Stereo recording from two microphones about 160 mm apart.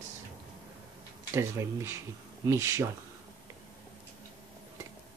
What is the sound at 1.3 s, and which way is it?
Speech, 15° right (ahead or behind).